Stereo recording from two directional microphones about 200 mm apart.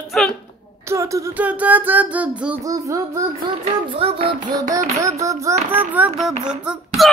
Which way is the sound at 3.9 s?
25° right (ahead or behind).